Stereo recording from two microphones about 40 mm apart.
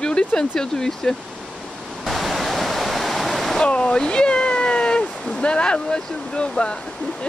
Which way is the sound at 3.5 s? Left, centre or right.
Left.